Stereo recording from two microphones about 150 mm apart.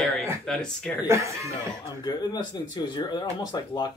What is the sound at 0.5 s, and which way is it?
Speech, 5° left (ahead or behind).